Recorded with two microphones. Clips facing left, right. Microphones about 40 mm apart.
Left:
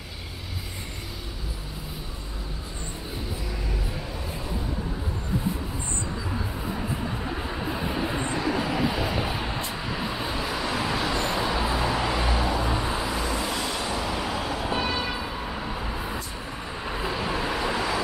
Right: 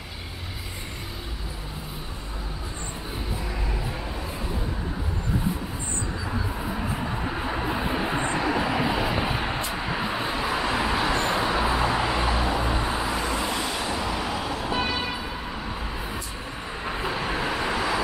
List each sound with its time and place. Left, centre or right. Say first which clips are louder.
7.0 s vehicle: right 2 dB; centre
16.8 s vehicle: right 1 dB; centre